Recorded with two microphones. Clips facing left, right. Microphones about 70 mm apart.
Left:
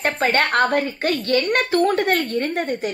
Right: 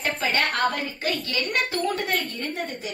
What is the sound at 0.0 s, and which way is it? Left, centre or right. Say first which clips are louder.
A woman's voice: left 5 dB; left.